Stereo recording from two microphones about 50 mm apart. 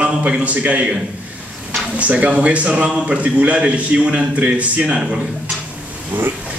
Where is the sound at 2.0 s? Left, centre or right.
Right.